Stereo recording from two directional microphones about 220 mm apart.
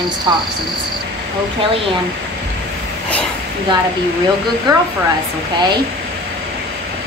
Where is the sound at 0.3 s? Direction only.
20° right (ahead or behind).